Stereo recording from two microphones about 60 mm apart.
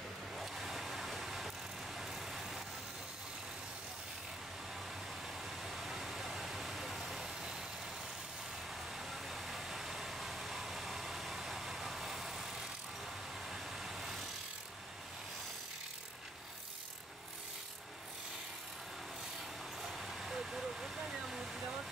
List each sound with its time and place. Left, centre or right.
0.4 s vehicle: centre
5.2 s vehicle: centre
8.6 s vehicle: centre
19.8 s vehicle: centre